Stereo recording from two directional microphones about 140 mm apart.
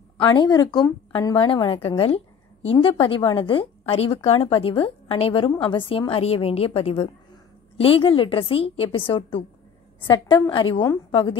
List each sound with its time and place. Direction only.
0.2 s a woman's voice: 30° left (ahead or behind)